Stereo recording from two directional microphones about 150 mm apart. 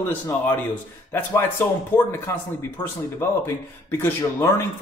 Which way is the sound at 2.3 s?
20° left (ahead or behind).